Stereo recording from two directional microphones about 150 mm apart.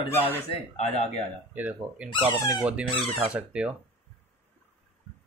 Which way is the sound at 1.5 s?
10° right (ahead or behind).